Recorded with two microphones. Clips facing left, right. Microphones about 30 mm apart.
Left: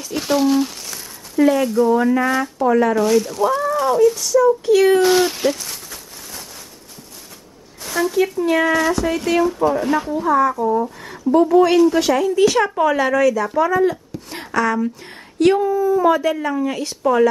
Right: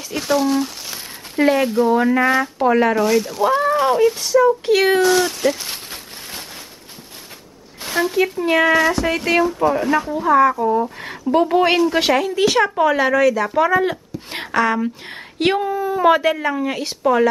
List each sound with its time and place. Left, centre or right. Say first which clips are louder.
0.1 s speech: left 1 dB; centre
1.3 s a woman's voice: left 1 dB; right
2.6 s speech: even; right
2.9 s speech: left 1 dB; centre
3.4 s a woman's voice: right 2 dB; right
5.0 s speech: left 1 dB; centre
5.6 s a sound: right 2 dB; right
7.8 s a woman's voice: even; right
9.7 s speech: right 1 dB; centre
11.3 s speech: left 2 dB; right
11.9 s speech: even; right
13.6 s a woman's voice: left 1 dB; right